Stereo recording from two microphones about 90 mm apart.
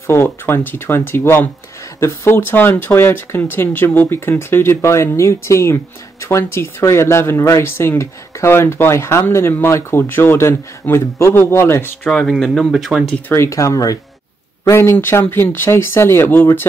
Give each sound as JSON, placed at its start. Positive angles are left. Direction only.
{"t": 0.0, "sound": "speech", "side_deg": 30}
{"t": 12.1, "sound": "speech", "side_deg": 5}
{"t": 13.3, "sound": "speech", "side_deg": 35}